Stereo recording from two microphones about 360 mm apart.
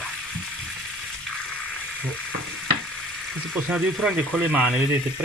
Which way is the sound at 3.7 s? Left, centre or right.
Centre.